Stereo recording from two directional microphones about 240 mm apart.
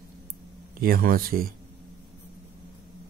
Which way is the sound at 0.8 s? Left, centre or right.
Right.